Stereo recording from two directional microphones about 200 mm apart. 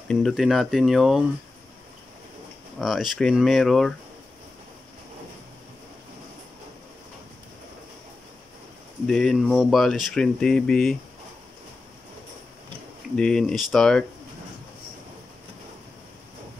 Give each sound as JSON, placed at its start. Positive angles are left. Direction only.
{"t": 0.1, "sound": "speech", "side_deg": 0}
{"t": 2.8, "sound": "speech", "side_deg": 0}
{"t": 9.0, "sound": "speech", "side_deg": 0}
{"t": 13.1, "sound": "speech", "side_deg": 5}